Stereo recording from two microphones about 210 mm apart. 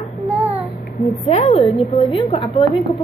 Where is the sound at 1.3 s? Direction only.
30° left (ahead or behind).